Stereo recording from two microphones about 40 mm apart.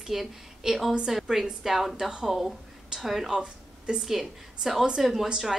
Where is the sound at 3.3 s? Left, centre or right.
Right.